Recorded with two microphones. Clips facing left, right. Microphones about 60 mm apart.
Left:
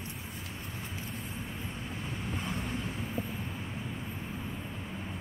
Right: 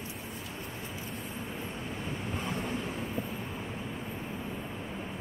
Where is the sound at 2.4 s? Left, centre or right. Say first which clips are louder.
Right 3 dB; right.